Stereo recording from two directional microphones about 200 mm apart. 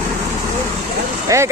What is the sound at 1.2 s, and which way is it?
Speech, 15° right (ahead or behind).